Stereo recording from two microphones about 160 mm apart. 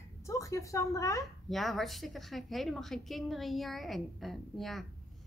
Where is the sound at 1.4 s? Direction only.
Centre (ahead or behind).